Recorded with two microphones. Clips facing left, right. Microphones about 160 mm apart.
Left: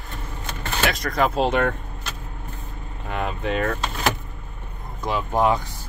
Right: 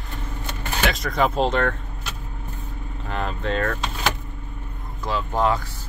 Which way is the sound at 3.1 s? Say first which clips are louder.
Left 1 dB; 10° left (ahead or behind).